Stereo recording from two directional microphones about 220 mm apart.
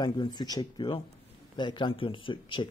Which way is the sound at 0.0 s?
20° left (ahead or behind).